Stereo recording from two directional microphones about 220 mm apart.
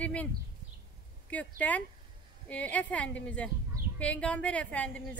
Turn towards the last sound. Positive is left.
turn(degrees=5)  # may be behind; listen again after turning